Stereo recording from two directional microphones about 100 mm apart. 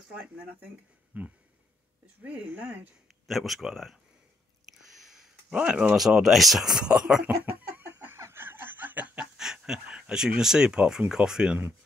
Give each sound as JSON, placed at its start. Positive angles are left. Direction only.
{"t": 1.1, "sound": "speech", "side_deg": -15}
{"t": 3.3, "sound": "speech", "side_deg": 0}
{"t": 4.8, "sound": "a sound", "side_deg": -5}
{"t": 5.9, "sound": "speech", "side_deg": -5}
{"t": 7.2, "sound": "a sound", "side_deg": -20}
{"t": 8.2, "sound": "snicker", "side_deg": -25}